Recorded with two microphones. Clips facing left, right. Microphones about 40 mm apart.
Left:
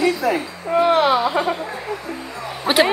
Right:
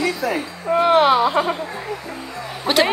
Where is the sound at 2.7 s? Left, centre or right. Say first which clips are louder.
Left 1 dB; left.